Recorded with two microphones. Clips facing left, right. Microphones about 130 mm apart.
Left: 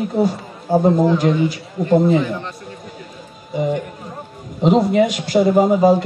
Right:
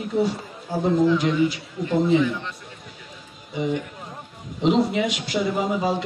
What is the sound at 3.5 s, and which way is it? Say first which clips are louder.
A man's voice: left 5 dB; 45° left (ahead or behind).